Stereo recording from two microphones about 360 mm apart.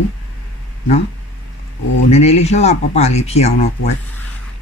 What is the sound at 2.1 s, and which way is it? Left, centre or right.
Speech, centre.